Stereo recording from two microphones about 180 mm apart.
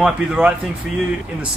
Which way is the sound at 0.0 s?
5° right (ahead or behind).